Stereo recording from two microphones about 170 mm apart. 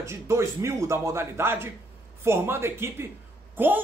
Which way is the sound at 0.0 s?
15° right (ahead or behind).